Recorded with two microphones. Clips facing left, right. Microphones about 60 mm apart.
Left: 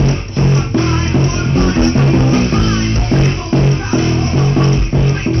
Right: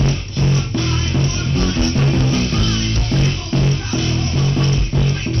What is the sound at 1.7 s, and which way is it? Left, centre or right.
Music, left.